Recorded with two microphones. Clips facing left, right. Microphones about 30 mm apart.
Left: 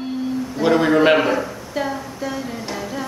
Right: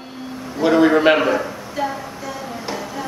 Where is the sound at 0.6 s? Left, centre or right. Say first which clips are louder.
Right 2 dB; centre.